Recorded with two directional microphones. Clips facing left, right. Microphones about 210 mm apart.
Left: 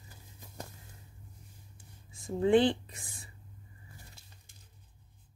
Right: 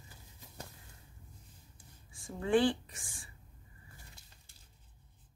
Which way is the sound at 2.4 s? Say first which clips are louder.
Left 4 dB; 20° left (ahead or behind).